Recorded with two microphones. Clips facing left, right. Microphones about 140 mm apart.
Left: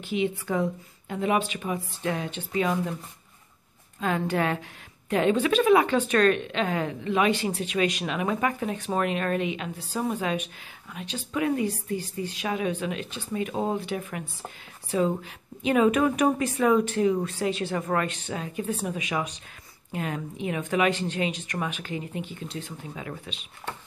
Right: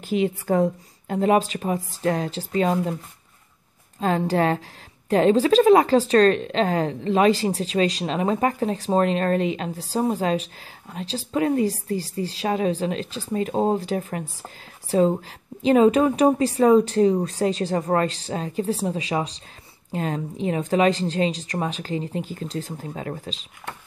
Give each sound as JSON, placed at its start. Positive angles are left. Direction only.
{"t": 0.0, "sound": "a woman's voice", "side_deg": -40}
{"t": 4.0, "sound": "a woman's voice", "side_deg": -35}